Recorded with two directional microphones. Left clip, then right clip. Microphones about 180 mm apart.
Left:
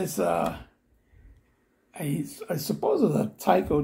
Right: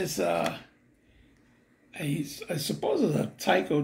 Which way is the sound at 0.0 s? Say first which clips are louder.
Left 2 dB; 10° left (ahead or behind).